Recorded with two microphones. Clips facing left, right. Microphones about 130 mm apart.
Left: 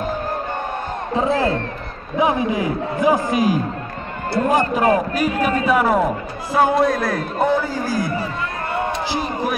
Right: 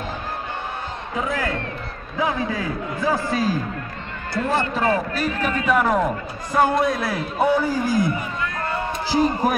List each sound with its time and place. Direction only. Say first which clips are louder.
1.1 s a man's voice: left 7 dB; 30° left (ahead or behind); by 8.1 s 20° right (ahead or behind)
8.2 s music: left 2 dB; 25° left (ahead or behind)
9.1 s speech: right 3 dB; 45° right (ahead or behind)